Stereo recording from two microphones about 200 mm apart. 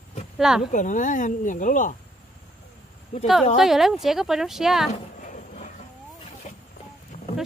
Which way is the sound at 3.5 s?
Centre (ahead or behind).